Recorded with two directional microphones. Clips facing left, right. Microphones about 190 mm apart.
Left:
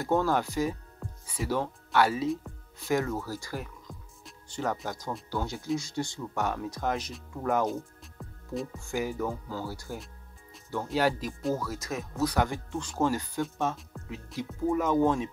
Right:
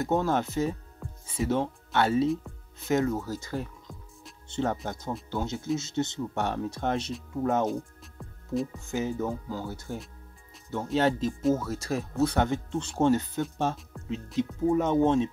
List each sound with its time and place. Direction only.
0.0 s speech: 20° right (ahead or behind)
1.0 s music: centre (ahead or behind)
1.5 s speech: 25° right (ahead or behind)
7.6 s music: centre (ahead or behind)
8.7 s speech: 20° right (ahead or behind)